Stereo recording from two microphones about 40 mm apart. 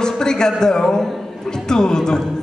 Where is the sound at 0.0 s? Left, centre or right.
Centre.